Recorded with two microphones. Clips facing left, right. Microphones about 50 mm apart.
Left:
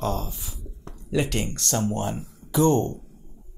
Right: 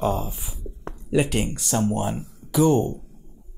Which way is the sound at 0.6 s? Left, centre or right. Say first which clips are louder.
Right 6 dB; right.